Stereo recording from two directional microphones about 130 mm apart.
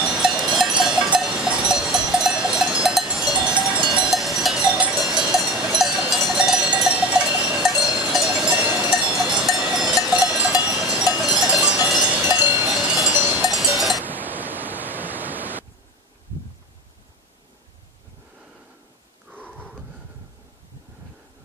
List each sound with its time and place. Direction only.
0.0 s cowbell: 5° right (ahead or behind)
12.3 s cowbell: 15° right (ahead or behind)
12.7 s cowbell: 5° right (ahead or behind)
13.1 s cowbell: 15° right (ahead or behind)
13.5 s cowbell: centre (ahead or behind)
14.0 s pink noise: 15° right (ahead or behind)
19.3 s a sound: 15° right (ahead or behind)